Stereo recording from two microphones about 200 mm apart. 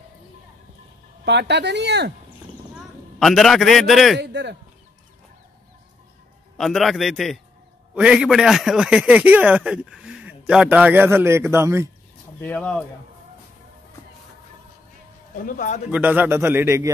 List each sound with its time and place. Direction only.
1.2 s speech: 60° right (ahead or behind)
2.7 s a man's voice: centre (ahead or behind)
4.2 s speech: 60° right (ahead or behind)
6.6 s a man's voice: centre (ahead or behind)
12.4 s speech: 10° left (ahead or behind)
15.4 s a man's voice: 40° left (ahead or behind)
15.9 s a man's voice: 5° right (ahead or behind)